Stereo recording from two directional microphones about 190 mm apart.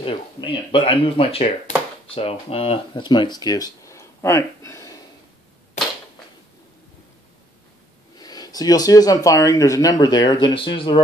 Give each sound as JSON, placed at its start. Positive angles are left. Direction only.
{"t": 0.0, "sound": "speech", "side_deg": 25}
{"t": 1.7, "sound": "a sound", "side_deg": 40}
{"t": 2.0, "sound": "speech", "side_deg": 30}
{"t": 8.2, "sound": "speech", "side_deg": 20}